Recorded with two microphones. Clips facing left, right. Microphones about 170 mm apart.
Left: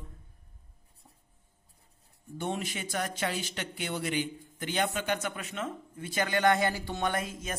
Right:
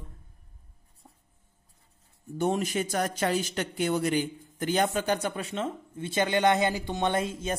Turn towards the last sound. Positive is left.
turn(degrees=-25)  # may be behind; listen again after turning